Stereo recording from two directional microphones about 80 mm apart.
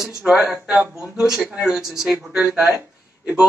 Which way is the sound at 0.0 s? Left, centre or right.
Centre.